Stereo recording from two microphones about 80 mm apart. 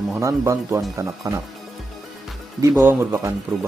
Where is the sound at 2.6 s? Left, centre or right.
Right.